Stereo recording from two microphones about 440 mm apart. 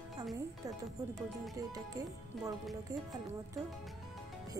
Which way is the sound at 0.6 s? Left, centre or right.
Centre.